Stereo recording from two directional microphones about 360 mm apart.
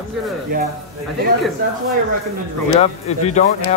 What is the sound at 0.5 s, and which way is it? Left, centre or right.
Speech, right.